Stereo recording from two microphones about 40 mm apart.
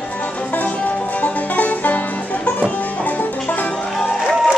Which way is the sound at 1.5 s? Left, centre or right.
Left.